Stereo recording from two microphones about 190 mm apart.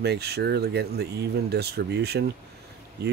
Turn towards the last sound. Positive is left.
turn(degrees=-60)  # may be behind; listen again after turning